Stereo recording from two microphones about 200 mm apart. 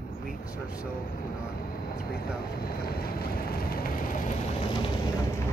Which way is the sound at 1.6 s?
50° left (ahead or behind).